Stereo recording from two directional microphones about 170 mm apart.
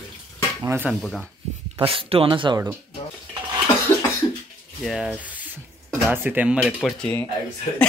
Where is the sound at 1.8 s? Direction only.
35° right (ahead or behind).